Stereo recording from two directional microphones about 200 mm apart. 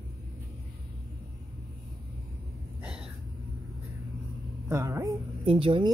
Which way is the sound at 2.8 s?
5° right (ahead or behind).